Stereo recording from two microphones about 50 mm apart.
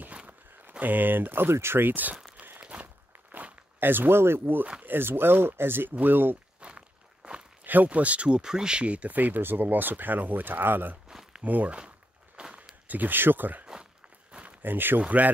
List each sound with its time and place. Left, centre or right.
0.0 s a sound: right
0.7 s speech: right
2.6 s walk: right
4.8 s speech: right
6.6 s walk: right
7.6 s speech: right
11.1 s a sound: centre
11.4 s speech: right
12.4 s walk: right
12.8 s speech: right
15.0 s speech: right